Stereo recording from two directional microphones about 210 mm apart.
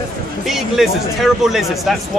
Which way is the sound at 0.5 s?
Centre (ahead or behind).